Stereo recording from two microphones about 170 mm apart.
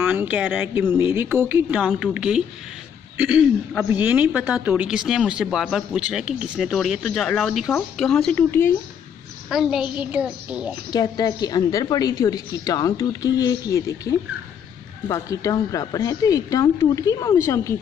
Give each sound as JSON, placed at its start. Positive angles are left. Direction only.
{"t": 0.0, "sound": "a woman's voice", "side_deg": -10}
{"t": 9.5, "sound": "a woman's voice", "side_deg": -5}
{"t": 10.9, "sound": "a woman's voice", "side_deg": 25}